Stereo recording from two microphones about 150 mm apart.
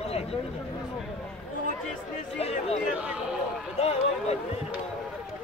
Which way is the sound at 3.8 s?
45° left (ahead or behind).